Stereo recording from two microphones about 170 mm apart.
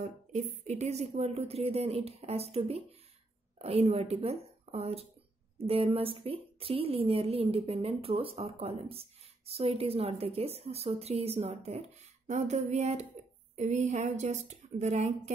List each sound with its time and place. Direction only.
0.0 s a woman's voice: 45° right (ahead or behind)